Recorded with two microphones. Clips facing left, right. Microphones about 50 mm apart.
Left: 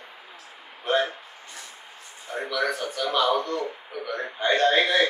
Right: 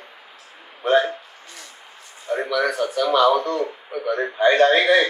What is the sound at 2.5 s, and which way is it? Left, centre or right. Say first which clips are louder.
A man's voice: right 4 dB; right.